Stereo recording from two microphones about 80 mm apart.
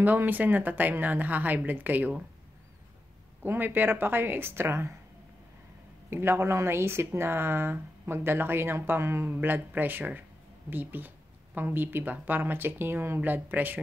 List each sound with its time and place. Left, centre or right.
0.0 s speech: right
3.4 s speech: right
6.0 s a woman's voice: right